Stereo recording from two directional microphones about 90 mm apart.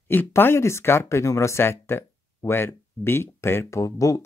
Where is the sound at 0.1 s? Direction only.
25° left (ahead or behind).